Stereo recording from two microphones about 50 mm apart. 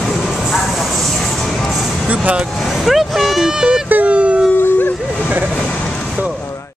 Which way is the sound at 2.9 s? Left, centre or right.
Centre.